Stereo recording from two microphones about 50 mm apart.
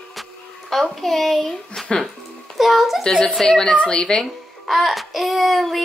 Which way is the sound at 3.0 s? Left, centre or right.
Centre.